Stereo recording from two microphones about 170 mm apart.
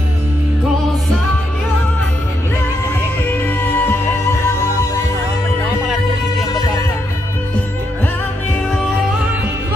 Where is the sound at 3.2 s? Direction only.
10° left (ahead or behind).